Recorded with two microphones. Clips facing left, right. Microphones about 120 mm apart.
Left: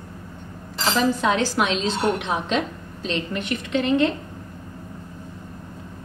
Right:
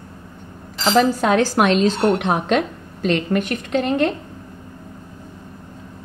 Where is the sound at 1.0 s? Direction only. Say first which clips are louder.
Right 5 dB; 45° right (ahead or behind).